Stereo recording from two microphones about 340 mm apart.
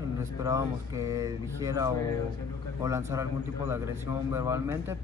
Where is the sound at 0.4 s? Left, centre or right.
Centre.